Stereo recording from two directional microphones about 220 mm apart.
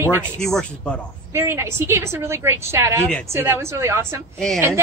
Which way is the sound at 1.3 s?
10° right (ahead or behind).